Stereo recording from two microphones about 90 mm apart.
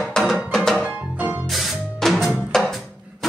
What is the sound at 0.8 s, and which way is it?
Music, 20° right (ahead or behind).